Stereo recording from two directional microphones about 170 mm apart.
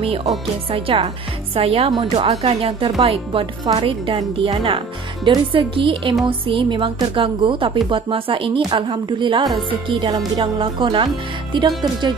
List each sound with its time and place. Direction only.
0.0 s a woman's voice: 35° right (ahead or behind)